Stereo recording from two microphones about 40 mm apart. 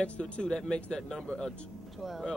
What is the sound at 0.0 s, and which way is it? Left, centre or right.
Speech, left.